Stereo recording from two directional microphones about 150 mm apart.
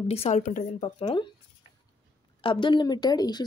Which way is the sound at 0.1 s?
40° left (ahead or behind).